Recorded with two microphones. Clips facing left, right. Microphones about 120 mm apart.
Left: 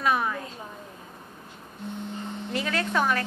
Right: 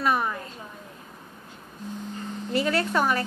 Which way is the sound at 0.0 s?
Centre (ahead or behind).